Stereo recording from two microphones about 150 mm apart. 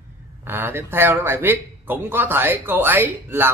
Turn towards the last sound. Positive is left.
turn(degrees=-15)  # may be behind; listen again after turning